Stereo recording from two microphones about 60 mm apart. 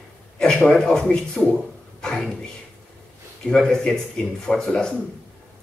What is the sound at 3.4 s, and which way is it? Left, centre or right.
Speech, centre.